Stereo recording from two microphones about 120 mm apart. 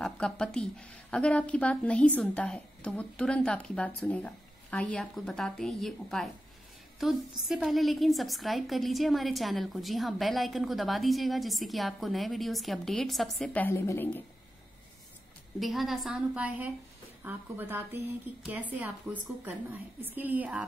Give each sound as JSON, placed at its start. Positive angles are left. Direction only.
{"t": 0.0, "sound": "a woman's voice", "side_deg": 5}
{"t": 13.5, "sound": "a woman's voice", "side_deg": 15}
{"t": 15.6, "sound": "a woman's voice", "side_deg": 0}
{"t": 20.0, "sound": "a woman's voice", "side_deg": -15}